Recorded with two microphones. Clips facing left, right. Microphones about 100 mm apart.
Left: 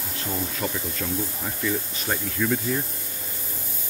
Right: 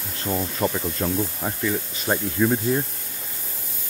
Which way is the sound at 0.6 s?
35° right (ahead or behind).